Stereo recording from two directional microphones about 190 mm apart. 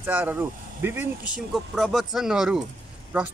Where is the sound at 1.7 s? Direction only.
Centre (ahead or behind).